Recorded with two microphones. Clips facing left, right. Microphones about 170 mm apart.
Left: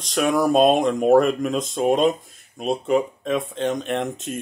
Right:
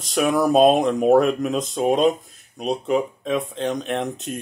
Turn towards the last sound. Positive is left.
turn(degrees=0)  # may be behind; listen again after turning